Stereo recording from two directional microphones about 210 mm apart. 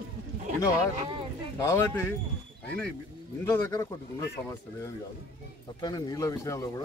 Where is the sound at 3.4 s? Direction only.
15° left (ahead or behind).